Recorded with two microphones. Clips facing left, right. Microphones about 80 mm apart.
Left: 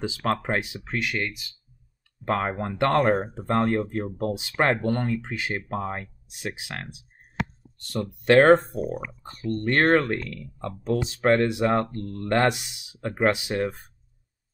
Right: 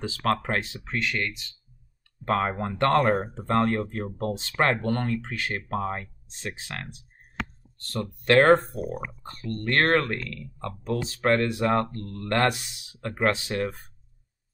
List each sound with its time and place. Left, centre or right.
0.0 s speech: centre
4.7 s speech: centre
5.3 s speech: centre
8.8 s speech: centre
9.2 s speech: left